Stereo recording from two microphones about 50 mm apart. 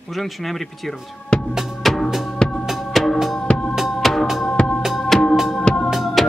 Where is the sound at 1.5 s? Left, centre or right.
Centre.